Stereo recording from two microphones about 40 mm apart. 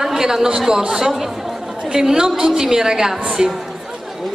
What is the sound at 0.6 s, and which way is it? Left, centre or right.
A woman's voice, centre.